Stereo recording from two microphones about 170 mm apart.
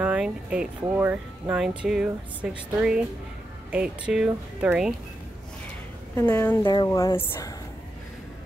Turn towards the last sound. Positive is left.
turn(degrees=20)  # may be behind; listen again after turning